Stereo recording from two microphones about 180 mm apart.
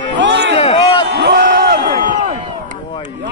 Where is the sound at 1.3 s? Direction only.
50° right (ahead or behind).